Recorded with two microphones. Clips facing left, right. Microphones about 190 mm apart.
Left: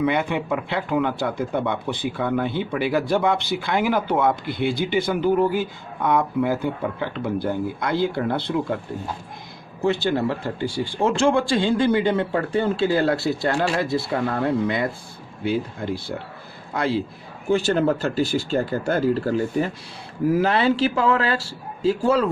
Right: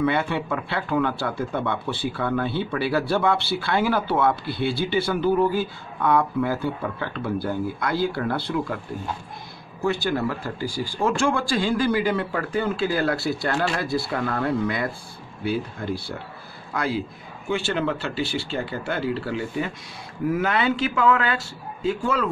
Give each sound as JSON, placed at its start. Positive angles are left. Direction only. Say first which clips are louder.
{"t": 0.0, "sound": "speech", "louder": "left 1 dB", "side_deg": 15}
{"t": 17.5, "sound": "speech", "louder": "left 5 dB", "side_deg": 40}
{"t": 20.2, "sound": "speech", "louder": "left 4 dB", "side_deg": 30}